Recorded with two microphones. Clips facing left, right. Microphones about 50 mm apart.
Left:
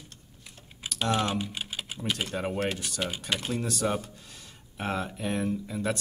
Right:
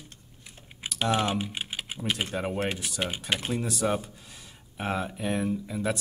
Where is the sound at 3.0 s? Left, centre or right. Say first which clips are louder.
Right 2 dB; centre.